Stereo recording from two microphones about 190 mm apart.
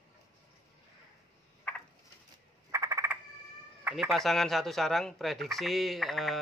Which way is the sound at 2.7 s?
15° right (ahead or behind).